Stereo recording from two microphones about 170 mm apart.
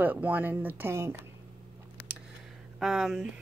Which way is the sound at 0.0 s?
10° right (ahead or behind).